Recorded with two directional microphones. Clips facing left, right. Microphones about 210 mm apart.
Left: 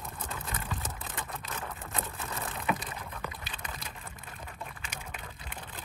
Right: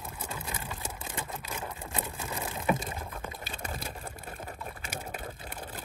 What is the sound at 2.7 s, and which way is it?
Vehicle, 45° right (ahead or behind).